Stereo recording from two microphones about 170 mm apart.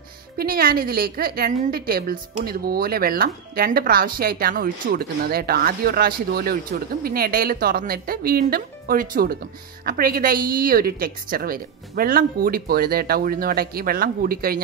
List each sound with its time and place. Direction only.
0.4 s a woman's voice: 60° right (ahead or behind)